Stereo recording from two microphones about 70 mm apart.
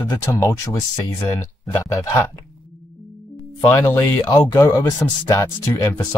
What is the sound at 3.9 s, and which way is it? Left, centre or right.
Speech, left.